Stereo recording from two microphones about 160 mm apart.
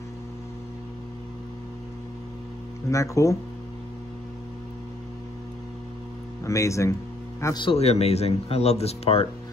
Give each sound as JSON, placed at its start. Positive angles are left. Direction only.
{"t": 2.9, "sound": "speech", "side_deg": 20}
{"t": 6.4, "sound": "speech", "side_deg": 20}
{"t": 7.6, "sound": "speech", "side_deg": 40}